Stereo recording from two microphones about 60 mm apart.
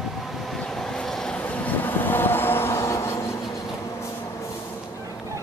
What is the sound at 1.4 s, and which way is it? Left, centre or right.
Vehicle, left.